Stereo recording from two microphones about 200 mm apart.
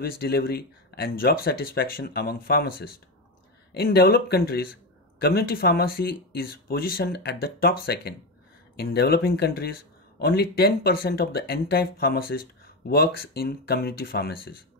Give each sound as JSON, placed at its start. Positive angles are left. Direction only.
{"t": 0.0, "sound": "speech", "side_deg": 50}